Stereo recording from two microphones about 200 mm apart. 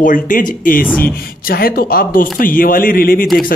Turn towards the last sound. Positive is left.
turn(degrees=45)  # may be behind; listen again after turning